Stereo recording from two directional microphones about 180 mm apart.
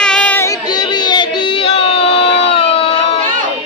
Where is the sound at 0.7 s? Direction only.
25° left (ahead or behind).